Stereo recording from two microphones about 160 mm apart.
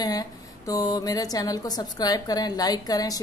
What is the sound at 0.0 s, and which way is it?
A woman's voice, 25° left (ahead or behind).